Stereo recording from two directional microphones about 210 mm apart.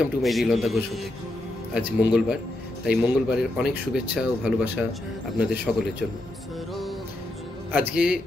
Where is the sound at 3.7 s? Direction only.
5° right (ahead or behind).